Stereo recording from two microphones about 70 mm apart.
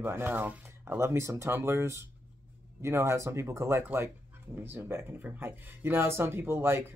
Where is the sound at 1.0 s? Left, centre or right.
Right.